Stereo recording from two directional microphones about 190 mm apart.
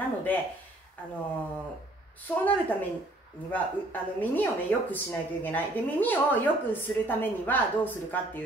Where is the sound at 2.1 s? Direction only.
10° left (ahead or behind).